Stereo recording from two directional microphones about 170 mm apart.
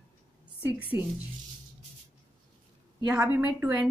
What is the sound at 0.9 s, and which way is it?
Speech, 10° right (ahead or behind).